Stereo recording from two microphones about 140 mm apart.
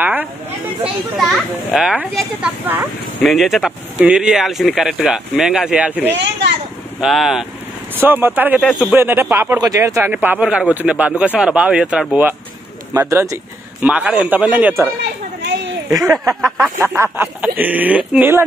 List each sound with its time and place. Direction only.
0.0 s a sound: 10° right (ahead or behind)
1.1 s speech: centre (ahead or behind)
3.3 s speech: centre (ahead or behind)
7.9 s a man's voice: 15° right (ahead or behind)
8.5 s speech: centre (ahead or behind)
8.9 s a man's voice: 15° right (ahead or behind)
10.1 s a man's voice: 10° right (ahead or behind)
12.9 s a man's voice: 20° right (ahead or behind)
15.9 s speech: centre (ahead or behind)
16.8 s a man's voice: 15° right (ahead or behind)